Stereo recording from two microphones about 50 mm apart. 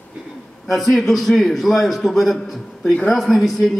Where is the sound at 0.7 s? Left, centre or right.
Centre.